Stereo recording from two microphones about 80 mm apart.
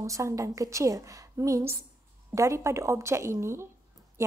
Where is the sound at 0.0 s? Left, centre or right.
Right.